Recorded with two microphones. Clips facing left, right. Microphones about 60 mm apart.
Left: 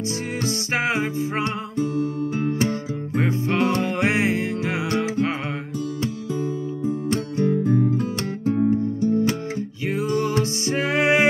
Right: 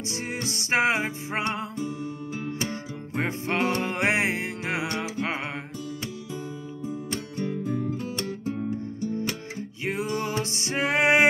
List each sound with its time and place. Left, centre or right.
0.7 s music: right
2.7 s music: right
8.5 s music: left
9.8 s music: right